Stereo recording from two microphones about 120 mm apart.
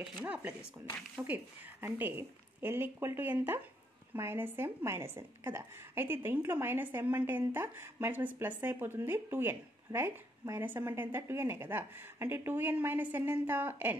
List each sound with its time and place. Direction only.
0.2 s a woman's voice: 15° right (ahead or behind)